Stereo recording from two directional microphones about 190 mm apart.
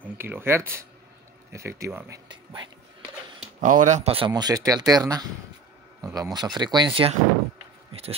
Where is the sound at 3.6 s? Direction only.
45° right (ahead or behind); by 7.1 s 25° right (ahead or behind).